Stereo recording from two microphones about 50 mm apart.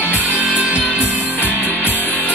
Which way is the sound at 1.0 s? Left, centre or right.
Left.